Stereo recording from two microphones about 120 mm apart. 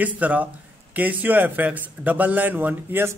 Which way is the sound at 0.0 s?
15° right (ahead or behind).